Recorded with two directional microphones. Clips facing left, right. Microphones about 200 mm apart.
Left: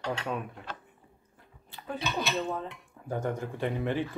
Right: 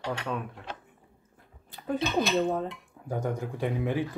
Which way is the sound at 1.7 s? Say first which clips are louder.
Right 6 dB; 45° right (ahead or behind).